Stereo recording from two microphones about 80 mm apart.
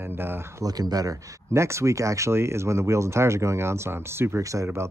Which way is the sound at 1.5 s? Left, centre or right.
Right.